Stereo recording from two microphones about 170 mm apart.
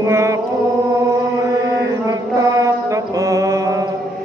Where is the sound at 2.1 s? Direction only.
20° right (ahead or behind).